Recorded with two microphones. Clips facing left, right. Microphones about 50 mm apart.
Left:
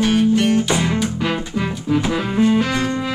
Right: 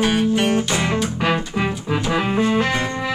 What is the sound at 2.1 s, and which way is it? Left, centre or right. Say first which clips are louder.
Music: even; right.